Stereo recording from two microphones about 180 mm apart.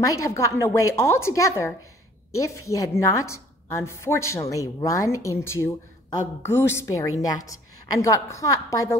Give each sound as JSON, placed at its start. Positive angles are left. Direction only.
{"t": 0.0, "sound": "a woman's voice", "side_deg": 15}